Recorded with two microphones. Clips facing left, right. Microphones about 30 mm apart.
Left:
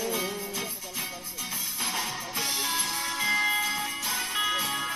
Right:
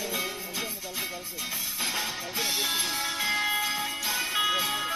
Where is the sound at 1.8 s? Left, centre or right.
Centre.